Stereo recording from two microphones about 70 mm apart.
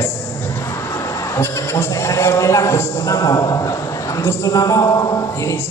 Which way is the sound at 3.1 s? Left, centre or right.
Left.